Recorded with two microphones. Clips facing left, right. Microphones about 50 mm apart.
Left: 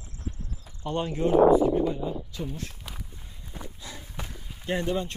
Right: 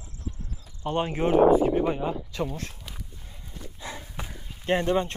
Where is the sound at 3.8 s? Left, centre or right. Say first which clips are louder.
Right 9 dB; right.